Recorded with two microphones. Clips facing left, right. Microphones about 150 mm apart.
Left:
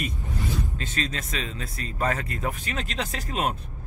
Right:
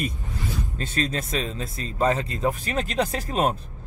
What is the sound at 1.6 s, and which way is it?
Speech, 25° right (ahead or behind).